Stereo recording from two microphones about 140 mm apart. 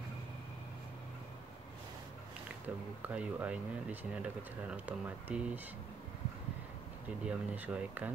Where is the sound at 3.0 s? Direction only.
10° right (ahead or behind).